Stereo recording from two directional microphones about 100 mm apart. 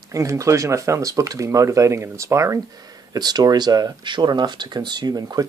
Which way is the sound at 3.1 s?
40° right (ahead or behind).